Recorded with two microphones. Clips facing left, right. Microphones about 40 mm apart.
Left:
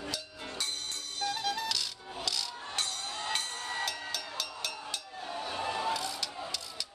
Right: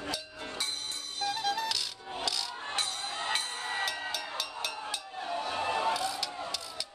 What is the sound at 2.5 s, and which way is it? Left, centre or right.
Music, right.